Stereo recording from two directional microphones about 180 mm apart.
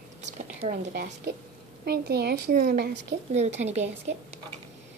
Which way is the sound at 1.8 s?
60° right (ahead or behind).